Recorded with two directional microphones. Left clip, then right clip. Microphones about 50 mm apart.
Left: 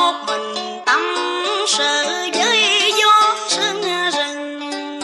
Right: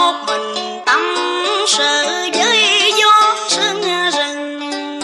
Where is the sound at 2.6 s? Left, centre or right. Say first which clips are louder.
Right 3 dB; right.